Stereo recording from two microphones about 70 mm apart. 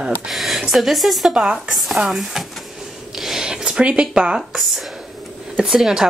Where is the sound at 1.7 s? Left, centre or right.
Centre.